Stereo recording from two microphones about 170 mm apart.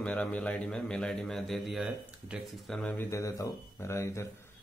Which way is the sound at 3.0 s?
15° left (ahead or behind).